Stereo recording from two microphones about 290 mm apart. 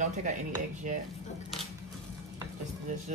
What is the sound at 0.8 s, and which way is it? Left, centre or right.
Speech, right.